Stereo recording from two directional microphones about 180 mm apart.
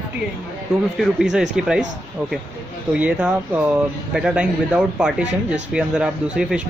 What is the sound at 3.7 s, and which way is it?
Speech, 5° right (ahead or behind).